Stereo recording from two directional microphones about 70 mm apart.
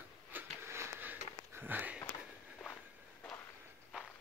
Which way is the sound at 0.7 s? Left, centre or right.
Right.